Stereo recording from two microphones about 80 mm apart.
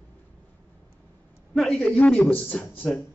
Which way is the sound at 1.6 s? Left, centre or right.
Centre.